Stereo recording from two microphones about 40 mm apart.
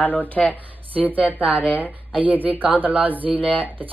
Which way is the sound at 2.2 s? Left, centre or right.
Right.